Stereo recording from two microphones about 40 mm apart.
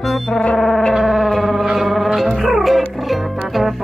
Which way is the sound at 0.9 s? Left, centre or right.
Centre.